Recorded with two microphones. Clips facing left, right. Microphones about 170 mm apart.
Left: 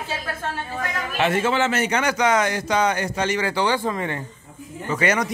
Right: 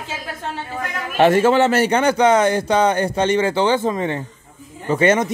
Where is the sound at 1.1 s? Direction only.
40° right (ahead or behind).